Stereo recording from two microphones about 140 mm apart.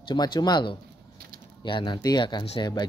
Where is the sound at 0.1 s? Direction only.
30° left (ahead or behind).